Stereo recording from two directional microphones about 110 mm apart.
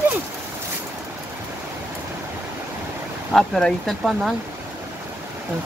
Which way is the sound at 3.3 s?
5° left (ahead or behind).